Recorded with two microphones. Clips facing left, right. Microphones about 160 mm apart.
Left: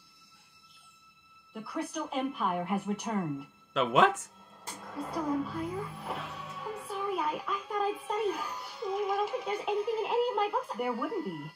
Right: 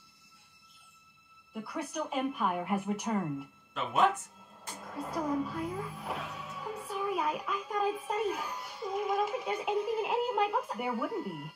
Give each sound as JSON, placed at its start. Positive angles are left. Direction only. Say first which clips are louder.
{"t": 1.5, "sound": "a woman's voice", "louder": "left 2 dB", "side_deg": 0}
{"t": 3.7, "sound": "speech", "louder": "left 3 dB", "side_deg": 90}
{"t": 5.0, "sound": "music", "louder": "left 1 dB", "side_deg": 0}